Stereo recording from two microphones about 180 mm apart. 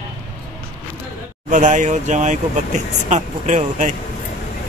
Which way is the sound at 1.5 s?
45° right (ahead or behind).